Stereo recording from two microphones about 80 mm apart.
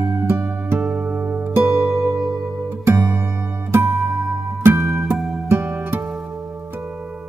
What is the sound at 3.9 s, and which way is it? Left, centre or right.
Music, centre.